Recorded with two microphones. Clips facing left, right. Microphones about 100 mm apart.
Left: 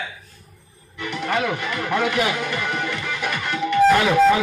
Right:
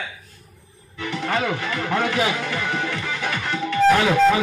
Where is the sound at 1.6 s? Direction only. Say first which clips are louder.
Even; 10° left (ahead or behind).